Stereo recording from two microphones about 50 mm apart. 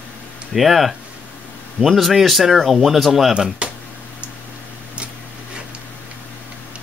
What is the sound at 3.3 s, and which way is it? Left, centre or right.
Speech, centre.